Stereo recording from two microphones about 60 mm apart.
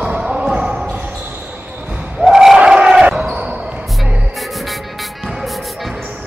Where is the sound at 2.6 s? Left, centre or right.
Centre.